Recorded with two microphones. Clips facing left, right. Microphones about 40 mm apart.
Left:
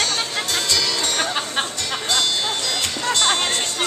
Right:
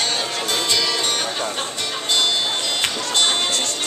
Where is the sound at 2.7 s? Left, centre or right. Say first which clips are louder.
Even; right.